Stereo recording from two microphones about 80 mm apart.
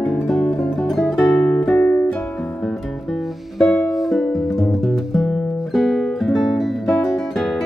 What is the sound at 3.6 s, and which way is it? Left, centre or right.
Music, centre.